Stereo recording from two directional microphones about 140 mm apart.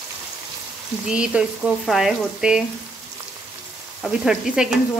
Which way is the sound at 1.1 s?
5° right (ahead or behind).